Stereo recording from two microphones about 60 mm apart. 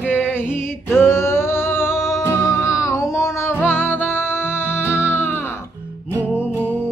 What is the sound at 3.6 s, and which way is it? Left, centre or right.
Music, left.